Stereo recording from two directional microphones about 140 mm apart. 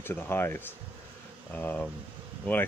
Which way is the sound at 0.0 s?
15° left (ahead or behind).